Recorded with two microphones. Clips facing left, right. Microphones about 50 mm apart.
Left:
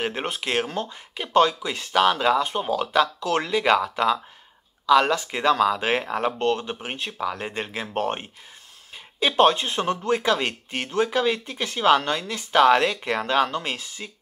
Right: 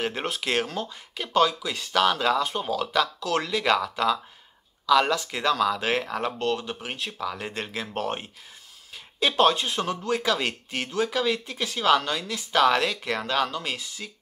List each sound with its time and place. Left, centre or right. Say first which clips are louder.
0.0 s speech: left 1 dB; centre
11.0 s speech: left 3 dB; left
11.6 s speech: left 3 dB; left